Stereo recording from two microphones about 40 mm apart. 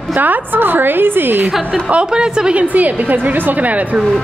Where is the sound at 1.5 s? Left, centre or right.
Centre.